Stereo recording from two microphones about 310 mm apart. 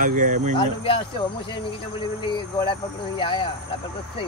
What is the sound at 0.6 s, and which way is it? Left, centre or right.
Speech, centre.